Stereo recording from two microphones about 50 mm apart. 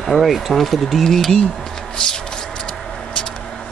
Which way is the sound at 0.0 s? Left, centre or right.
Centre.